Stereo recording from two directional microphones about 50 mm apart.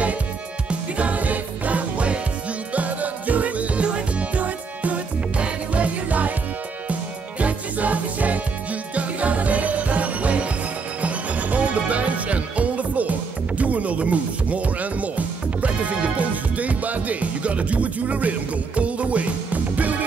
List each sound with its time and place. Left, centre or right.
0.7 s music: right